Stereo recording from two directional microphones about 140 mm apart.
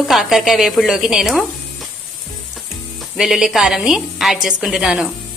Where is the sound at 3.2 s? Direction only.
Centre (ahead or behind).